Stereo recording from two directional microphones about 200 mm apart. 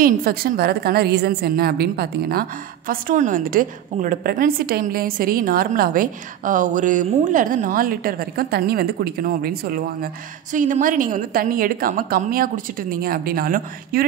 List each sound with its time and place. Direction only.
0.0 s a woman's voice: 50° right (ahead or behind)
2.9 s a woman's voice: 40° right (ahead or behind)